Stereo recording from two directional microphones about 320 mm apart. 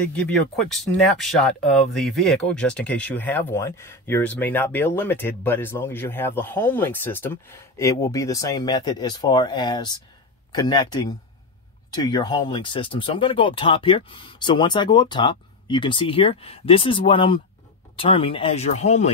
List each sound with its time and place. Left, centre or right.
0.7 s speech: centre; by 19.1 s left